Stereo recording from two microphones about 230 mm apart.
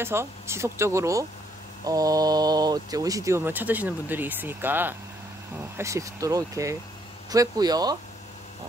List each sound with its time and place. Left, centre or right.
0.0 s speech: centre